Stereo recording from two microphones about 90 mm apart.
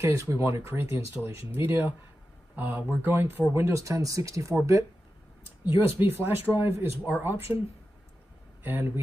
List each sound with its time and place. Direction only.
0.0 s speech: 35° right (ahead or behind)
5.7 s speech: 25° right (ahead or behind)
8.6 s speech: 25° right (ahead or behind)